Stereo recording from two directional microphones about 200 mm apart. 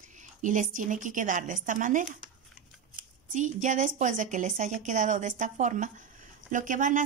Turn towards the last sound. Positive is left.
turn(degrees=-40)  # may be behind; listen again after turning